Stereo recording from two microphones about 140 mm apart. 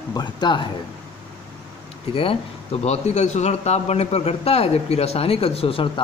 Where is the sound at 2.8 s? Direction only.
50° left (ahead or behind).